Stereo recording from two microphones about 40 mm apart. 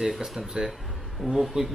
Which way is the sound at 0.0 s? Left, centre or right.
Centre.